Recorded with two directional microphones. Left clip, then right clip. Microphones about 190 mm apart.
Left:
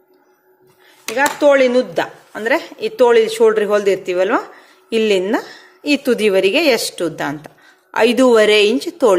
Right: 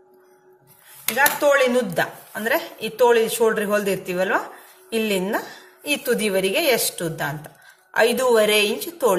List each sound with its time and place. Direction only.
1.1 s a woman's voice: 35° left (ahead or behind)